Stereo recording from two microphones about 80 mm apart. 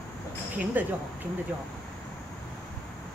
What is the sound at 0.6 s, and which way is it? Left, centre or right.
Speech, right.